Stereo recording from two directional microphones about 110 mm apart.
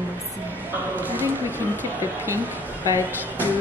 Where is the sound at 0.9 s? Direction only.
15° right (ahead or behind).